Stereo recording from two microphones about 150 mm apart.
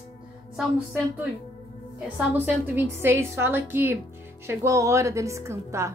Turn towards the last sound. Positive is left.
turn(degrees=-20)  # may be behind; listen again after turning